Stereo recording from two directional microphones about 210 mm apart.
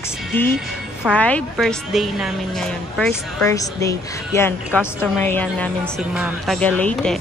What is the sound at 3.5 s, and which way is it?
A woman's voice, 15° left (ahead or behind).